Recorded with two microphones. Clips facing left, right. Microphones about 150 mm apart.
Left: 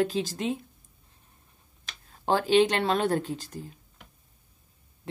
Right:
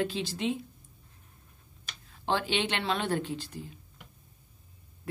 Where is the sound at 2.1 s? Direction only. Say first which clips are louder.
Left 8 dB; 45° left (ahead or behind).